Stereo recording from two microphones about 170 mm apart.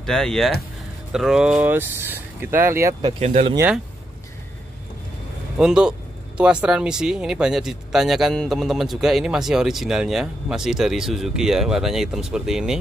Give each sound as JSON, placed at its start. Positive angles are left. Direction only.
{"t": 0.0, "sound": "speech", "side_deg": 5}
{"t": 3.0, "sound": "speech", "side_deg": -35}
{"t": 5.6, "sound": "speech", "side_deg": -5}